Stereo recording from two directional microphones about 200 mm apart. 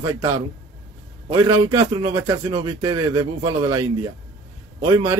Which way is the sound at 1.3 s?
20° right (ahead or behind).